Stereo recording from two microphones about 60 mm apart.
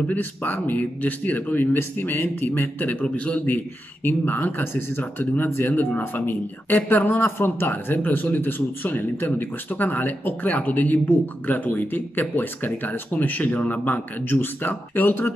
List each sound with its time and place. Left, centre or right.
0.1 s speech: left